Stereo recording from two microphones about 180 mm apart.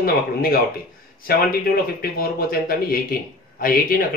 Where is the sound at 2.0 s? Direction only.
55° left (ahead or behind).